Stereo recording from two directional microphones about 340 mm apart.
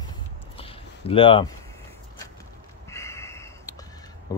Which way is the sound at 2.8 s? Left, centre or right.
Centre.